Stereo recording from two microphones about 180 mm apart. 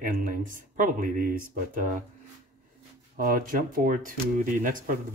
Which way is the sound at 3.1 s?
50° right (ahead or behind).